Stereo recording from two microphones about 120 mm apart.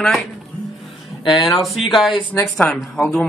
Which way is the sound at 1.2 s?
45° left (ahead or behind).